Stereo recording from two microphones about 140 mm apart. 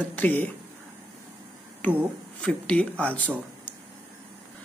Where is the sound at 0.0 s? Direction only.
10° left (ahead or behind).